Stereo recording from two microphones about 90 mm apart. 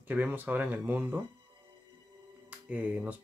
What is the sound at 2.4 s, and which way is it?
Speech, 15° right (ahead or behind).